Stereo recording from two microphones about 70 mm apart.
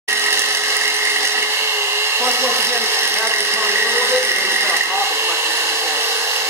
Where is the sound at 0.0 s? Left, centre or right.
Right.